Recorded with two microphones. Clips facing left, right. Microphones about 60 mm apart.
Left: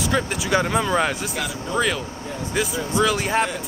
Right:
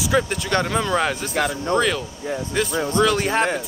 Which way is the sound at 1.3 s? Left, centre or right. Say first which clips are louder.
Right 6 dB; right.